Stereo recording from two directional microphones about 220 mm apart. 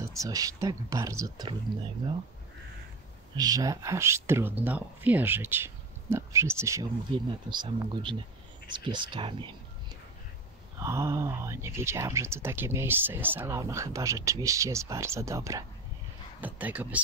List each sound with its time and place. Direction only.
0.1 s speech: 15° right (ahead or behind)
3.3 s speech: 15° right (ahead or behind)
10.8 s speech: 15° right (ahead or behind)